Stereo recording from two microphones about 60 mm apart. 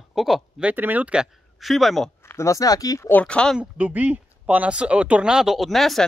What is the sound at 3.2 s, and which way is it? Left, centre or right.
Speech, centre.